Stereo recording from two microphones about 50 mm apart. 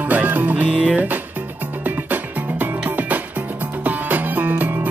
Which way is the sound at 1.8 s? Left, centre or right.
Right.